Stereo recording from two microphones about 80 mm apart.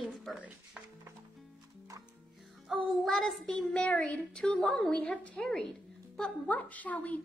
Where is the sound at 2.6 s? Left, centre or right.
Centre.